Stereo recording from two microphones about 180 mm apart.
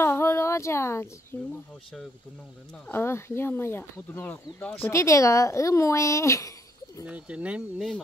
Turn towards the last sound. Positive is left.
turn(degrees=0)  # may be behind; listen again after turning